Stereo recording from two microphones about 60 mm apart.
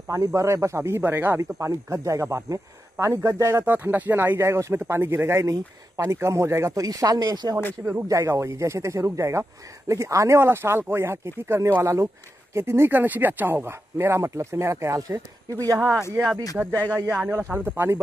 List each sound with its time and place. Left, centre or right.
0.1 s speech: right
1.0 s speech: right
1.6 s speech: right
3.6 s speech: right
4.4 s speech: right
5.5 s speech: right
6.7 s speech: right
7.8 s speech: right
11.8 s speech: right
12.5 s speech: right
15.0 s speech: right
16.6 s speech: right